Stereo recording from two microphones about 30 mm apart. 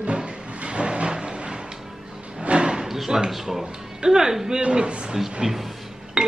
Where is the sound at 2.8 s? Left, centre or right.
Centre.